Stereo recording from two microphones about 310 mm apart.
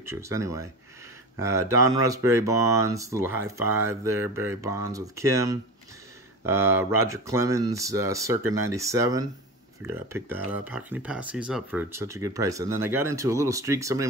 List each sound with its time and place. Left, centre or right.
0.0 s speech: centre